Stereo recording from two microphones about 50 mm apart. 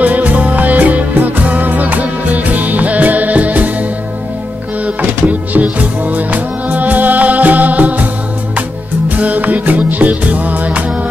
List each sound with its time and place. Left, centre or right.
0.0 s music: right
9.1 s music: right